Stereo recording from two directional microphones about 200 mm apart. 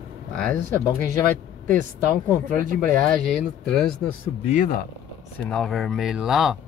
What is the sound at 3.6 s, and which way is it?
Speech, 5° left (ahead or behind).